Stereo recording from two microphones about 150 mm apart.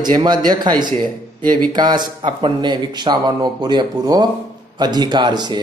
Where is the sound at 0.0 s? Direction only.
30° right (ahead or behind).